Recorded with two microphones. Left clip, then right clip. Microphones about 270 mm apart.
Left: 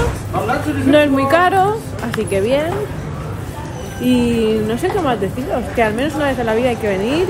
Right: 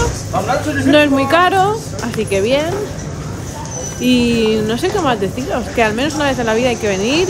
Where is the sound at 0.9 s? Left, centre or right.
Centre.